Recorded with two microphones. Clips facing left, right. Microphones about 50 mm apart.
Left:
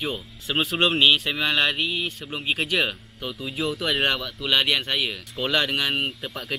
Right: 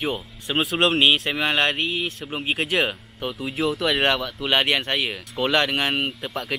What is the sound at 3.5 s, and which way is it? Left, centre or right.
Speech, centre.